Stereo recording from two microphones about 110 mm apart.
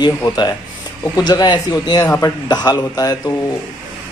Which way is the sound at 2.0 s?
25° left (ahead or behind).